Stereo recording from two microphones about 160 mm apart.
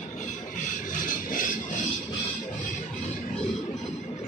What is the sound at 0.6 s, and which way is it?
Rub, 55° left (ahead or behind).